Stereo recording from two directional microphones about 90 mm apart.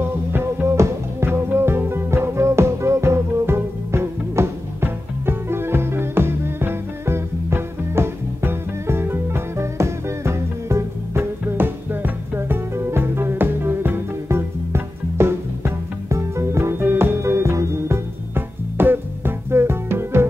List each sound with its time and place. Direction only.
0.0 s music: 25° right (ahead or behind)